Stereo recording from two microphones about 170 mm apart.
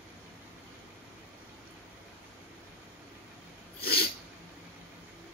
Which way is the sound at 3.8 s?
65° left (ahead or behind).